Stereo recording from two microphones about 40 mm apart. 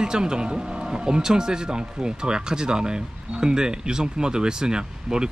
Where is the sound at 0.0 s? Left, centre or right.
Centre.